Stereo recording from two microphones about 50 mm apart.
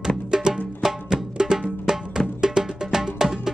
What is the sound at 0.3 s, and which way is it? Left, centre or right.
Music, centre.